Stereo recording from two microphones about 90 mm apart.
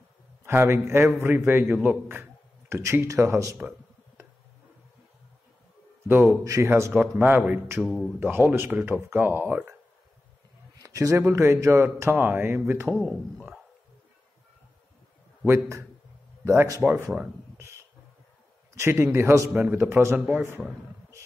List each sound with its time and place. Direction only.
0.5 s a man's voice: 25° right (ahead or behind)
6.0 s a man's voice: 25° right (ahead or behind)
6.4 s speech: 35° right (ahead or behind)
6.9 s a man's voice: 15° right (ahead or behind)
10.8 s a man's voice: 35° right (ahead or behind)
12.9 s speech: centre (ahead or behind)
15.4 s a man's voice: 30° right (ahead or behind)
16.8 s speech: 15° right (ahead or behind)
18.8 s a man's voice: 25° right (ahead or behind)
20.2 s speech: 10° right (ahead or behind)